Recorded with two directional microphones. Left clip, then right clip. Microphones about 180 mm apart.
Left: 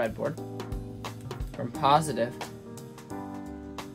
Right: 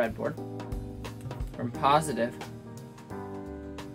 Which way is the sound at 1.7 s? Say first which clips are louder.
Left 1 dB; 20° left (ahead or behind).